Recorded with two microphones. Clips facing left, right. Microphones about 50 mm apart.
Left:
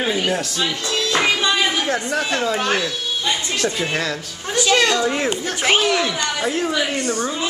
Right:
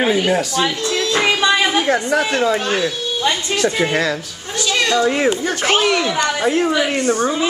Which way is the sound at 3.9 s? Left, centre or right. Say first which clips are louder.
Right 4 dB; centre.